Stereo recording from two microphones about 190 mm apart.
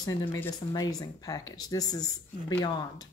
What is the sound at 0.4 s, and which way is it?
Speech, 20° left (ahead or behind).